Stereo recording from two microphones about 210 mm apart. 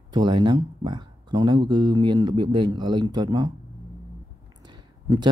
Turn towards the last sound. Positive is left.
turn(degrees=-20)  # may be behind; listen again after turning